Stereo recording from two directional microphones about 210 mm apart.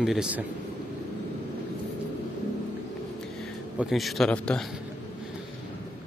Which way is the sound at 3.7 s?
Centre (ahead or behind).